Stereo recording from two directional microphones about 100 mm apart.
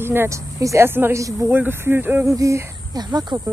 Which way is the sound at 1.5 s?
20° right (ahead or behind).